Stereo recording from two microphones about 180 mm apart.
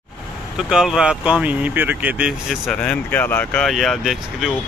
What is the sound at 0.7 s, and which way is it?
Speech, 5° right (ahead or behind).